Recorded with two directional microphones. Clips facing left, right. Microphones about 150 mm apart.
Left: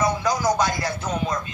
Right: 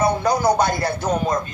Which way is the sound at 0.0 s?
60° right (ahead or behind).